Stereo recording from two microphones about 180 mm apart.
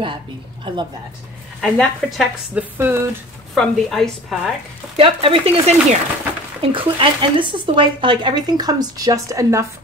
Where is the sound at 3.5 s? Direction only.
Centre (ahead or behind).